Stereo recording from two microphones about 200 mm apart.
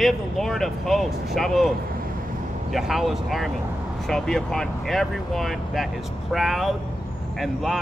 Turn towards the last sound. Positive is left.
turn(degrees=0)  # may be behind; listen again after turning